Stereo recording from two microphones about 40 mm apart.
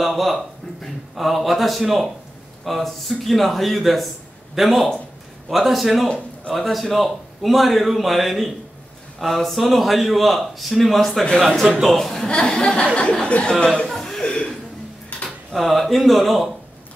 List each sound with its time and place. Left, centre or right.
0.0 s a sound: centre
1.1 s a man's voice: centre
6.0 s speech: left
6.5 s a man's voice: centre
12.3 s a sound: centre
13.4 s speech: left
13.8 s chuckle: centre
14.2 s chuckle: left
15.1 s a sound: left
15.5 s a man's voice: centre